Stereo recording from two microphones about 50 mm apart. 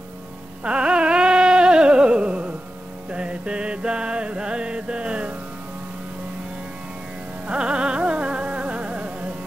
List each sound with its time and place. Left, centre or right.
0.7 s music: right
7.4 s music: centre